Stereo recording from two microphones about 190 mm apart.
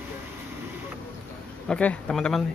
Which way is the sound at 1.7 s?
5° left (ahead or behind).